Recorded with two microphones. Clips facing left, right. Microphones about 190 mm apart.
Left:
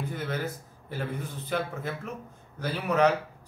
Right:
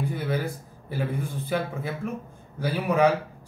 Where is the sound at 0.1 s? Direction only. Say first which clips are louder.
Right 4 dB; 10° right (ahead or behind).